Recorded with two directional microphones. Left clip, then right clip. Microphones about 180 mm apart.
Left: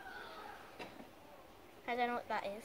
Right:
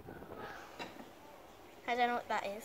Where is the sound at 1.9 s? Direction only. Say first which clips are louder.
Right 4 dB; 5° right (ahead or behind).